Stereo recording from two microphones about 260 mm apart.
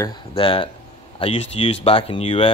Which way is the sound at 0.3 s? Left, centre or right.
Centre.